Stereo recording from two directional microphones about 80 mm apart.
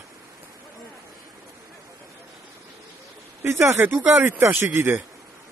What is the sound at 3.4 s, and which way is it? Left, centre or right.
Speech, right.